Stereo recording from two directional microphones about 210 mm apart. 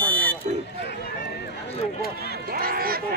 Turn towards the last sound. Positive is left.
turn(degrees=-45)  # may be behind; listen again after turning